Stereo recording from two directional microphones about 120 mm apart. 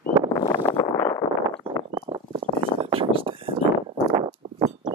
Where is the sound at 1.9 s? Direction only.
45° right (ahead or behind).